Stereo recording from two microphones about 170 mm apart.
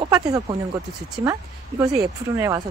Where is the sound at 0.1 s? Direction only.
20° right (ahead or behind).